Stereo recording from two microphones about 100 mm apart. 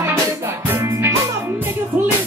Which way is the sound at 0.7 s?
25° right (ahead or behind).